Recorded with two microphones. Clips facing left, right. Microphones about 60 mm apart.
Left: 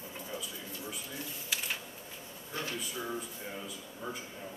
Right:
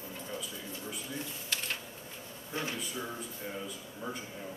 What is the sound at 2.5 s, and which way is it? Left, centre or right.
Speech, right.